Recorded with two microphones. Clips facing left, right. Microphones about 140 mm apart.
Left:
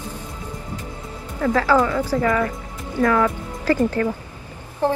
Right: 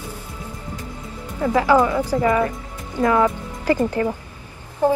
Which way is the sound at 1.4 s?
15° right (ahead or behind).